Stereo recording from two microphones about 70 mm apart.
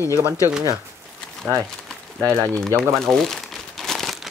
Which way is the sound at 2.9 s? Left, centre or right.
Centre.